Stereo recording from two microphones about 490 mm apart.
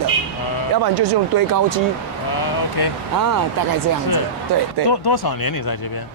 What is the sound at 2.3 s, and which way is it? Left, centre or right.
Speech, left.